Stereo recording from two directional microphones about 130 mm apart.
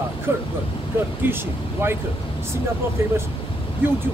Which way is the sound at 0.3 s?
20° right (ahead or behind).